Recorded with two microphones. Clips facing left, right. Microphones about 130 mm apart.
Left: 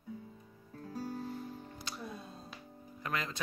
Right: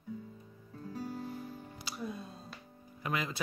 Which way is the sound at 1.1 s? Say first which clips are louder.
Even; 10° right (ahead or behind).